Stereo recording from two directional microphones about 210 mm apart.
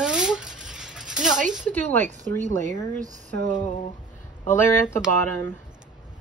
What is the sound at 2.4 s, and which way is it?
Speech, 35° right (ahead or behind).